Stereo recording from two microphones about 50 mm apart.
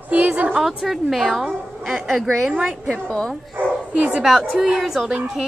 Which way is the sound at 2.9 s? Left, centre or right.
Centre.